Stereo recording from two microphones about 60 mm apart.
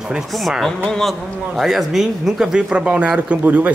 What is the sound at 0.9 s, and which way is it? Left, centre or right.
Speech, centre.